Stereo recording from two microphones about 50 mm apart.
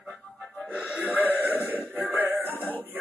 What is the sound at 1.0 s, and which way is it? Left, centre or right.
Music, right.